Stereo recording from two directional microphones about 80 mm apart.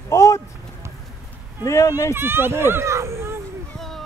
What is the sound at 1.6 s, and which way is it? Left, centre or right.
Speech, left.